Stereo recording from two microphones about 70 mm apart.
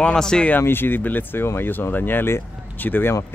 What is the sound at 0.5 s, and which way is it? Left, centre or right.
Speech, left.